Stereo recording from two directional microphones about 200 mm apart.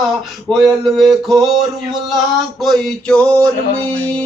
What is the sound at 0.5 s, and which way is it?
Speech, centre (ahead or behind).